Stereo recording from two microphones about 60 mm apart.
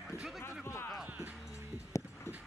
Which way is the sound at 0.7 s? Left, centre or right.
Left.